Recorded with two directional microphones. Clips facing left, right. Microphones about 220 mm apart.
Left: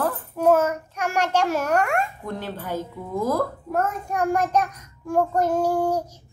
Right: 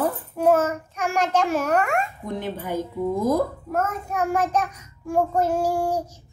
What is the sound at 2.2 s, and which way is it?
Child singing, 15° right (ahead or behind).